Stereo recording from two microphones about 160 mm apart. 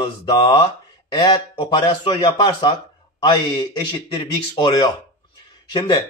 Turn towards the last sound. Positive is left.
turn(degrees=25)  # may be behind; listen again after turning